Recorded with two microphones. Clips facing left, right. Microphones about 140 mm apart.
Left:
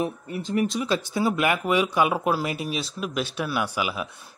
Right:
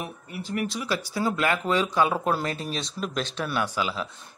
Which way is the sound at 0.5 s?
20° left (ahead or behind).